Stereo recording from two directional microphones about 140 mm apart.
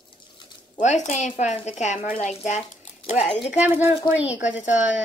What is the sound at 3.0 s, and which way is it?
Speech, 45° left (ahead or behind).